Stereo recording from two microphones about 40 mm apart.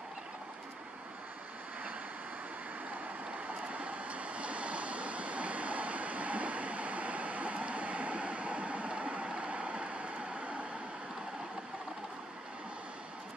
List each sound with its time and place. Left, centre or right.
3.6 s waves: right